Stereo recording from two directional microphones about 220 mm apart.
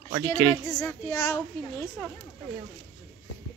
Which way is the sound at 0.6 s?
10° left (ahead or behind).